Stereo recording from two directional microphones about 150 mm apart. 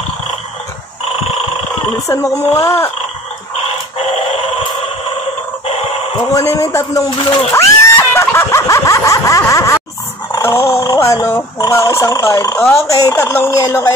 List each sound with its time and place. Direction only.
2.0 s speech: 20° left (ahead or behind)
6.3 s speech: 20° left (ahead or behind)
7.5 s cat: 20° left (ahead or behind)
10.3 s speech: 20° left (ahead or behind)